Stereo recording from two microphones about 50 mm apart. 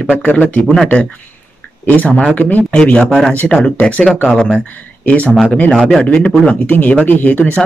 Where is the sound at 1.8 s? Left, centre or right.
Left.